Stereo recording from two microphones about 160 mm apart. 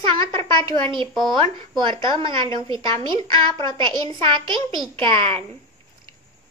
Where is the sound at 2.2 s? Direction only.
30° right (ahead or behind).